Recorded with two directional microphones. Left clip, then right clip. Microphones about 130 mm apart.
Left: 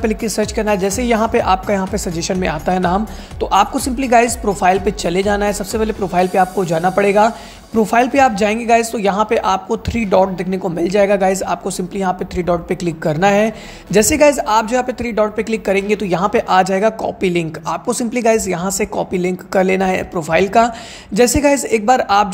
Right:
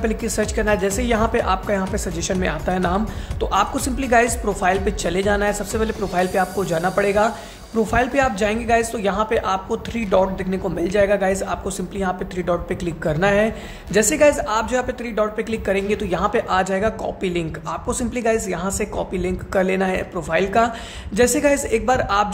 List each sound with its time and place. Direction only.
0.0 s a woman's voice: 25° left (ahead or behind)